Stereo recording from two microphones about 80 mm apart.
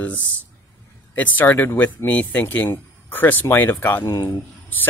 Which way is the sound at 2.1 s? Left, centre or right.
Centre.